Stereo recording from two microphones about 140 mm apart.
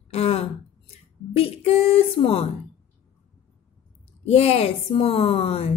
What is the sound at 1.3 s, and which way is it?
Music, 45° left (ahead or behind).